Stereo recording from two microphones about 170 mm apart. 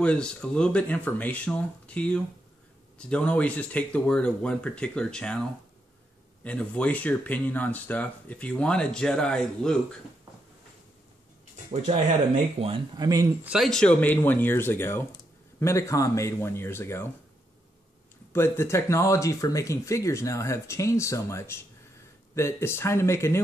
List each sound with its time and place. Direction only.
0.0 s speech: 5° left (ahead or behind)
12.5 s speech: 35° right (ahead or behind)
12.9 s speech: 20° right (ahead or behind)
13.5 s speech: centre (ahead or behind)
18.3 s speech: 15° left (ahead or behind)